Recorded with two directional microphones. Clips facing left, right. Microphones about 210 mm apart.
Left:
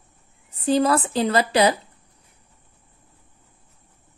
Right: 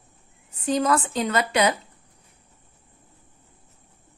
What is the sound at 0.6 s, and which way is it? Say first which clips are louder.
A woman's voice: left 3 dB; 30° left (ahead or behind).